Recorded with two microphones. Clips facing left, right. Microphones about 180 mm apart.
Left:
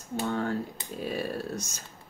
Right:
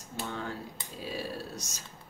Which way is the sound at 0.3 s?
55° left (ahead or behind).